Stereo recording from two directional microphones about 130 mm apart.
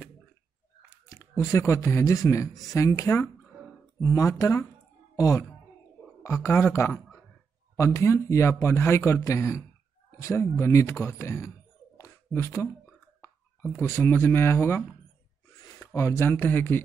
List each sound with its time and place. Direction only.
1.0 s speech: 25° left (ahead or behind)
12.0 s a sound: 20° left (ahead or behind)
13.2 s speech: 20° left (ahead or behind)